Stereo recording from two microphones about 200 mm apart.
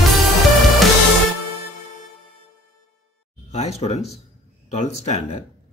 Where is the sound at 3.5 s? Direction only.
30° left (ahead or behind).